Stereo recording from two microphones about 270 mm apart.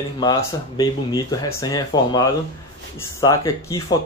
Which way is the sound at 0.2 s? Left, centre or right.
Centre.